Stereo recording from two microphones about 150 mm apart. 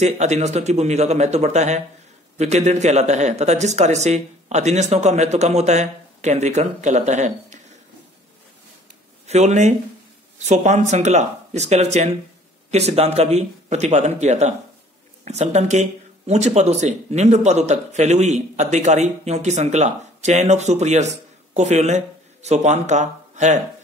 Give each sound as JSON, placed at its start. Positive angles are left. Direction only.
{"t": 0.0, "sound": "speech", "side_deg": -50}
{"t": 9.2, "sound": "speech", "side_deg": -50}